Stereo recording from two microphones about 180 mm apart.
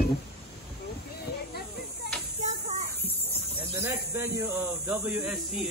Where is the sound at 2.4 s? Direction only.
40° right (ahead or behind).